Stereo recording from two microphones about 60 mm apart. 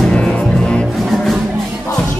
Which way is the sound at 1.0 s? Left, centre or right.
Centre.